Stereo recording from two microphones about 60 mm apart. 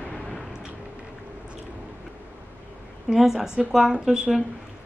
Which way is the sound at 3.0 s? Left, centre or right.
Centre.